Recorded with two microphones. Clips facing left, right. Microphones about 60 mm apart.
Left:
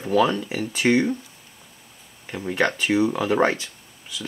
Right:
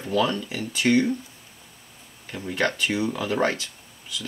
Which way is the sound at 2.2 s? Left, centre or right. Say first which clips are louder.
Left 3 dB; centre.